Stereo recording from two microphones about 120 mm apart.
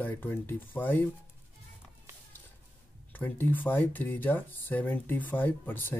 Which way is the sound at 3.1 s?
15° left (ahead or behind).